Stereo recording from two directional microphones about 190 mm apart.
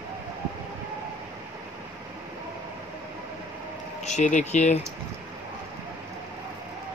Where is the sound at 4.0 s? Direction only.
40° left (ahead or behind).